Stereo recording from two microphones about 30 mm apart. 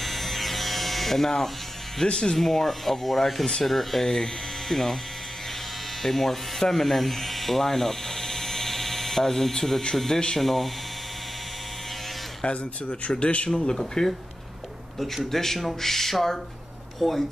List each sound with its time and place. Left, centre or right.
0.0 s electric shaver: centre
2.0 s speech: left
2.3 s speech: centre
4.1 s speech: centre
6.0 s speech: centre
12.4 s speech: left
13.7 s speech: centre
15.0 s speech: centre